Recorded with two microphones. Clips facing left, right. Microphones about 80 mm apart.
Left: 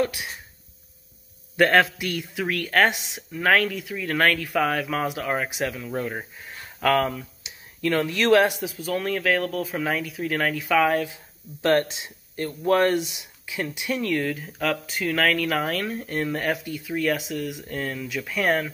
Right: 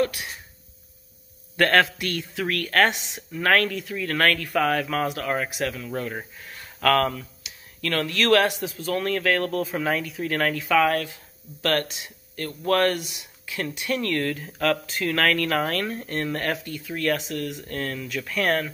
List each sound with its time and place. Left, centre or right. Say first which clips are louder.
0.0 s speech: right 1 dB; centre
1.6 s speech: left 1 dB; centre
11.6 s speech: left 4 dB; left